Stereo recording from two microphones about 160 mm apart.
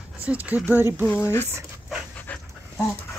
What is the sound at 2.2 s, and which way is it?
Dog, 10° left (ahead or behind).